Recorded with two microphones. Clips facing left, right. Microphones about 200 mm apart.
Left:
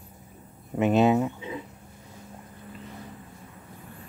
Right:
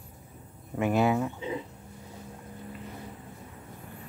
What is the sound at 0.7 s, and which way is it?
Speech, 20° left (ahead or behind).